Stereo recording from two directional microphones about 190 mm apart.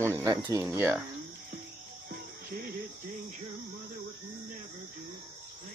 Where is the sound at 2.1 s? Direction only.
50° right (ahead or behind).